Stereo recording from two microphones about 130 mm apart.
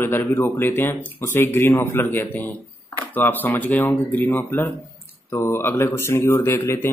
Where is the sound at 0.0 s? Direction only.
15° left (ahead or behind).